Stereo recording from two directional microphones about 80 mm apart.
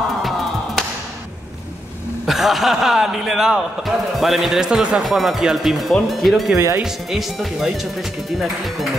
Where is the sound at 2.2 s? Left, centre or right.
Centre.